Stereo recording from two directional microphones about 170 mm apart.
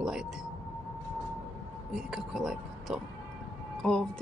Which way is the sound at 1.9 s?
5° right (ahead or behind).